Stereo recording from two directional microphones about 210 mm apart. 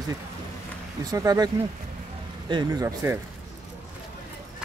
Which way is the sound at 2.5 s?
20° right (ahead or behind).